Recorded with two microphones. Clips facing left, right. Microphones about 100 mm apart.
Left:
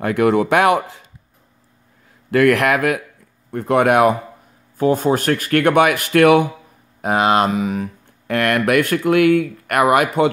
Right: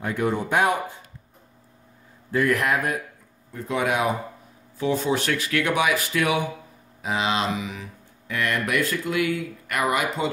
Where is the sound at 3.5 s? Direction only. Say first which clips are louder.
Left 10 dB; 60° left (ahead or behind).